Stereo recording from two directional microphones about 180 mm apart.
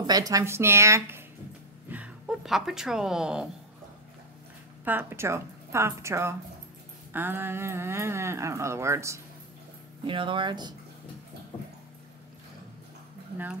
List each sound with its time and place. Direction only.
0.0 s speech: 20° right (ahead or behind); by 3.4 s 5° right (ahead or behind)
4.8 s speech: 10° right (ahead or behind)
10.0 s speech: 30° right (ahead or behind)